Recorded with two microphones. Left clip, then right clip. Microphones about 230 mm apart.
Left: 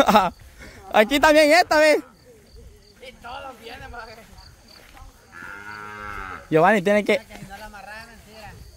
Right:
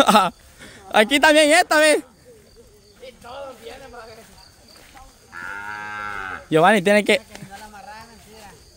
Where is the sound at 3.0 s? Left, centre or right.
Left.